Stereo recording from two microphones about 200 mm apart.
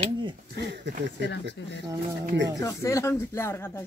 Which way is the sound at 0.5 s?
60° right (ahead or behind).